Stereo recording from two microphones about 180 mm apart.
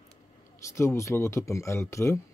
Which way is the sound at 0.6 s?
15° left (ahead or behind).